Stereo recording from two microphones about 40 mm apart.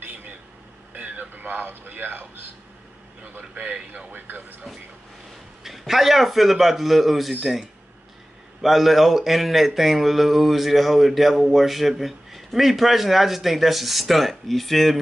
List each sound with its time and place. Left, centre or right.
0.1 s a sound: right
3.3 s speech: right
5.6 s a man's voice: centre
8.5 s a man's voice: centre